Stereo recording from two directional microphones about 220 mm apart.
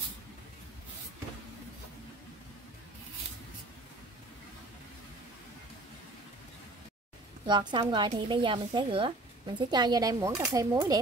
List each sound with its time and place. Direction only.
7.4 s speech: 20° right (ahead or behind)